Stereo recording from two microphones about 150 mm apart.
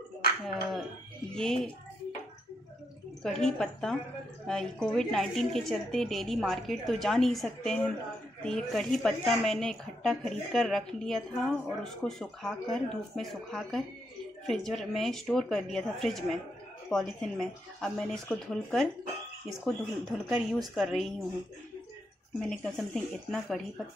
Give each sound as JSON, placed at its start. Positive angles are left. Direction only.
{"t": 0.5, "sound": "a sound", "side_deg": 0}
{"t": 1.3, "sound": "speech", "side_deg": 5}
{"t": 3.2, "sound": "speech", "side_deg": 5}
{"t": 22.4, "sound": "speech", "side_deg": 5}